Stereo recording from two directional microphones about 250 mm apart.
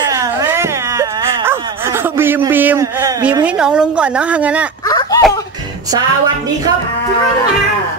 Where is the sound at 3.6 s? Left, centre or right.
Centre.